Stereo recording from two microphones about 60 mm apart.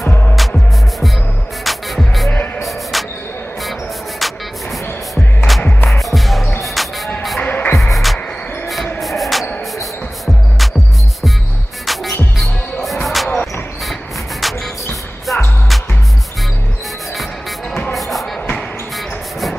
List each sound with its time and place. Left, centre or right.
0.1 s music: left
1.6 s music: centre
4.2 s music: centre
5.6 s music: left
5.9 s music: centre
7.3 s music: left
7.7 s music: centre
11.8 s music: centre
12.8 s basketball bounce: centre
14.4 s music: centre
17.9 s basketball bounce: centre